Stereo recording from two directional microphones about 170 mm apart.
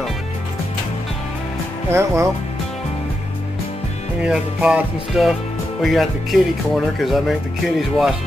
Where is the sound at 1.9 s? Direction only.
15° right (ahead or behind).